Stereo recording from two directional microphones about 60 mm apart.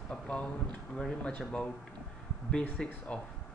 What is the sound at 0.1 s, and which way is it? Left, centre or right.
Speech, centre.